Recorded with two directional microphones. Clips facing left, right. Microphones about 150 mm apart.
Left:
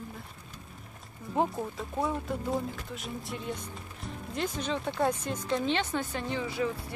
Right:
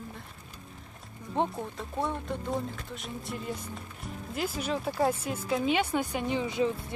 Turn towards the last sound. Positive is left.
turn(degrees=-20)  # may be behind; listen again after turning